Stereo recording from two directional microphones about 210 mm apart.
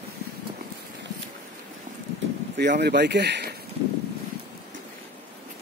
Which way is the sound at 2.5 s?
55° right (ahead or behind).